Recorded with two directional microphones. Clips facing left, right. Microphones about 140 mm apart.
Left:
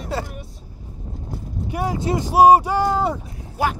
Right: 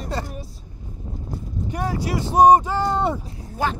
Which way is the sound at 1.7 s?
10° left (ahead or behind).